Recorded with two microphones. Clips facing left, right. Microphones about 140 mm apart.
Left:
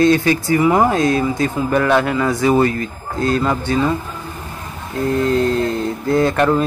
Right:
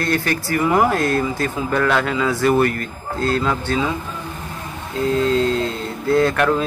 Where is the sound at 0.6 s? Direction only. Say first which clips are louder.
Left 1 dB; 5° left (ahead or behind).